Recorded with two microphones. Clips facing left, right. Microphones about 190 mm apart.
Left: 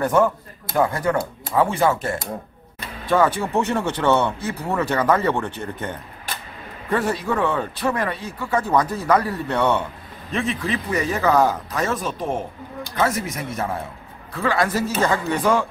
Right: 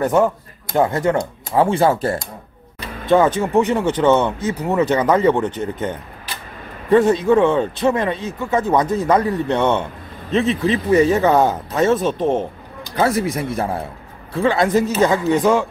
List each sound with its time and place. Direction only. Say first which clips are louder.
0.0 s speech: right 2 dB; 20° right (ahead or behind)
3.1 s speech: right 4 dB; 20° right (ahead or behind)